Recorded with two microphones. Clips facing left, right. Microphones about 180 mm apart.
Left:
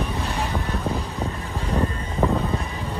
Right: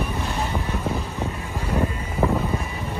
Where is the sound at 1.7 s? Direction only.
10° right (ahead or behind).